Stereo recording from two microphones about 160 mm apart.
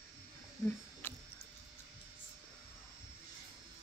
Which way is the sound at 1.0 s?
15° left (ahead or behind).